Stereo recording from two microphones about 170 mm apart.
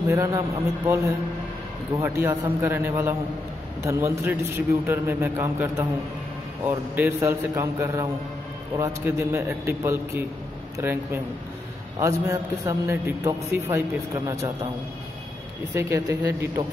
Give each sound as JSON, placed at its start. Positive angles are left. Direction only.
{"t": 0.1, "sound": "a man's voice", "side_deg": -15}
{"t": 2.0, "sound": "a man's voice", "side_deg": -15}
{"t": 15.7, "sound": "a man's voice", "side_deg": -15}